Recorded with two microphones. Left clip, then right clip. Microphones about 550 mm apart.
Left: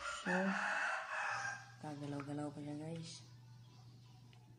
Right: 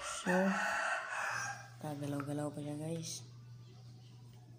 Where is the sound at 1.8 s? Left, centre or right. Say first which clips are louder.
Right 5 dB; left.